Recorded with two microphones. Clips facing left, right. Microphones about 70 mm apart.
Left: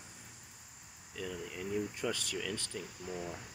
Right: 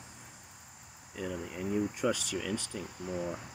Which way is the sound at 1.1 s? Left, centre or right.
Centre.